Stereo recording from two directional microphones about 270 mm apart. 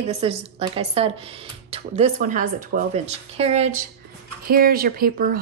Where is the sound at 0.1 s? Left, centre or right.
Right.